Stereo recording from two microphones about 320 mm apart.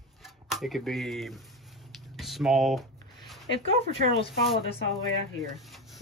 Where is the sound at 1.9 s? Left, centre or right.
Centre.